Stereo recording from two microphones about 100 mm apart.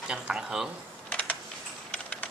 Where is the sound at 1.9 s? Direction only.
10° left (ahead or behind).